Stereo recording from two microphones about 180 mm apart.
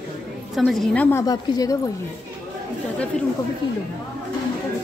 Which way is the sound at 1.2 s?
20° left (ahead or behind).